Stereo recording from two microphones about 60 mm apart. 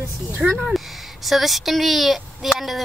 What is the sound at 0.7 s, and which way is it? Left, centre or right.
Speech, centre.